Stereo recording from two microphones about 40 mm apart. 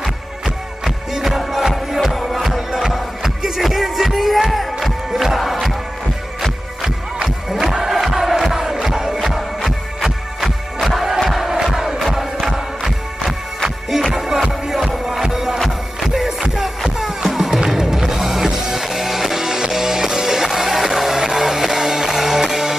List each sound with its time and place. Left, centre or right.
0.8 s music: centre
7.6 s music: centre
7.9 s crowd: centre
9.2 s music: centre
11.1 s crowd: centre
11.4 s crowd: centre
12.0 s music: centre